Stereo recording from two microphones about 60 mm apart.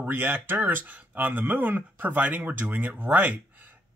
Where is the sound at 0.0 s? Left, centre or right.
Right.